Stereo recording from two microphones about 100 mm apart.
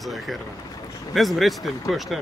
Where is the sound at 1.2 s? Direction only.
Centre (ahead or behind).